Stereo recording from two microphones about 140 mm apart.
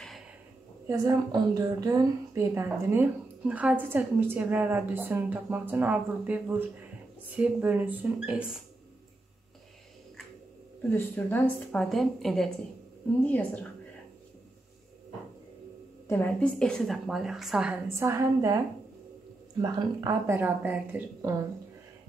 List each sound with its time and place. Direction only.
0.8 s a woman's voice: 25° right (ahead or behind); by 8.6 s 5° right (ahead or behind)
10.8 s a woman's voice: 15° left (ahead or behind)
11.8 s a woman's voice: centre (ahead or behind)
16.1 s a woman's voice: 10° left (ahead or behind); by 17.7 s 5° right (ahead or behind)
17.8 s a woman's voice: 20° right (ahead or behind)
19.6 s a woman's voice: 25° right (ahead or behind)